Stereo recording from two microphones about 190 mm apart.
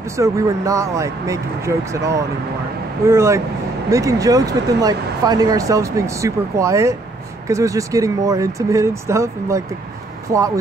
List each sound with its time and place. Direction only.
0.2 s speech: 15° right (ahead or behind)